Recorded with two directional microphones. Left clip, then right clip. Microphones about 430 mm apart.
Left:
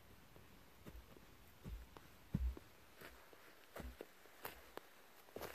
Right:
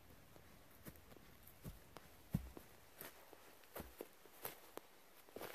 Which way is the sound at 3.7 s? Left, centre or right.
Centre.